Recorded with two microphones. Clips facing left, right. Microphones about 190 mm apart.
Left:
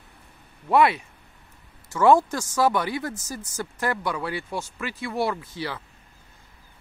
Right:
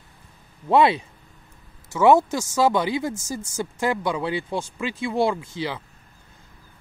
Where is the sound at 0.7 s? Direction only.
25° right (ahead or behind).